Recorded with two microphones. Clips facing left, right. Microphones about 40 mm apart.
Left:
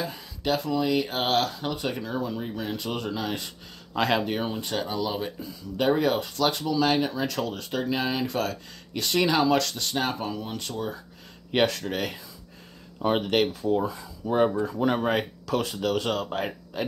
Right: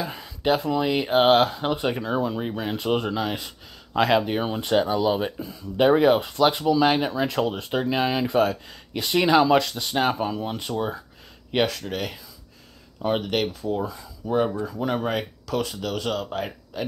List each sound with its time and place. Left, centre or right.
0.2 s speech: right
3.1 s speech: centre
4.6 s speech: right
11.5 s speech: centre